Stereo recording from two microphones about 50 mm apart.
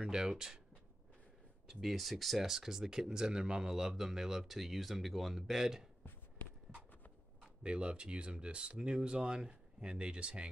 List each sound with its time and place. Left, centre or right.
0.0 s speech: centre
1.7 s speech: centre
7.6 s speech: right